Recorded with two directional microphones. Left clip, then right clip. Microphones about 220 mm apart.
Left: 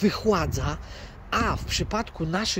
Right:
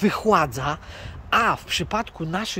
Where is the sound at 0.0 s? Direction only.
10° right (ahead or behind).